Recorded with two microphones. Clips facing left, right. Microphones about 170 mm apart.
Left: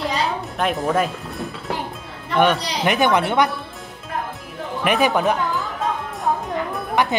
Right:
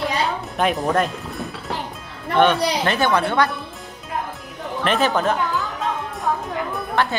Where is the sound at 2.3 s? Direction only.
10° left (ahead or behind).